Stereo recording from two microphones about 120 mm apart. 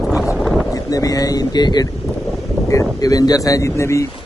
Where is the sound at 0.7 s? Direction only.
30° left (ahead or behind).